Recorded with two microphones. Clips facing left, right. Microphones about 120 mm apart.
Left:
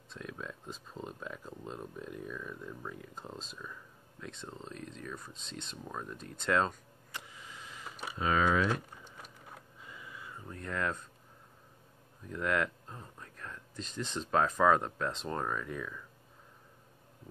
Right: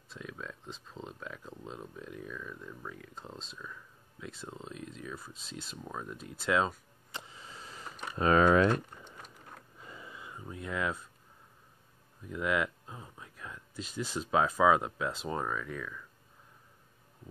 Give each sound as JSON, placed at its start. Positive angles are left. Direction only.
{"t": 0.1, "sound": "speech", "side_deg": 0}
{"t": 4.3, "sound": "speech", "side_deg": -5}
{"t": 7.1, "sound": "a sound", "side_deg": -25}
{"t": 8.2, "sound": "speech", "side_deg": -50}
{"t": 9.8, "sound": "a sound", "side_deg": -35}
{"t": 12.3, "sound": "speech", "side_deg": -5}